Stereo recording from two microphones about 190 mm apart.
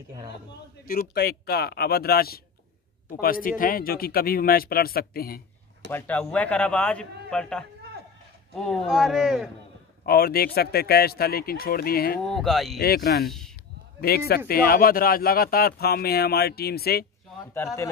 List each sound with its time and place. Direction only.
0.8 s a man's voice: 50° left (ahead or behind)
5.9 s a man's voice: 10° left (ahead or behind)
10.0 s speech: 55° left (ahead or behind)
12.2 s speech: centre (ahead or behind)
12.7 s a man's voice: 55° left (ahead or behind)